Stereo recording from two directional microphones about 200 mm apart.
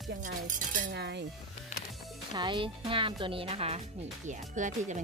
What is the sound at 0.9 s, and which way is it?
Speech, 60° right (ahead or behind).